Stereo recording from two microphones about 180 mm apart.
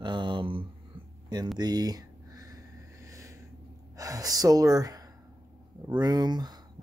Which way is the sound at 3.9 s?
20° right (ahead or behind).